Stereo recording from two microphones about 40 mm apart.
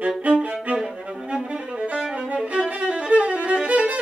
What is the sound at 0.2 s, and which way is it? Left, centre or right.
Music, right.